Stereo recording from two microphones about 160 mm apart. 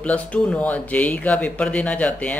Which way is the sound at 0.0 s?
10° left (ahead or behind).